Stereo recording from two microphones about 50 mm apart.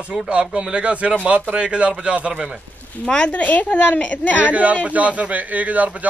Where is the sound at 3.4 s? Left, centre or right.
Left.